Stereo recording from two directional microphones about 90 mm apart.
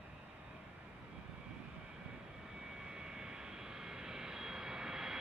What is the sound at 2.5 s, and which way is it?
Vehicle, 10° right (ahead or behind).